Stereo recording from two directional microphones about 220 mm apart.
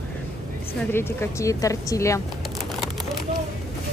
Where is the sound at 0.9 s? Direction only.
10° left (ahead or behind).